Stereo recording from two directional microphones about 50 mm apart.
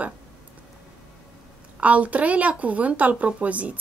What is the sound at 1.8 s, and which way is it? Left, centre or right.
A woman's voice, right.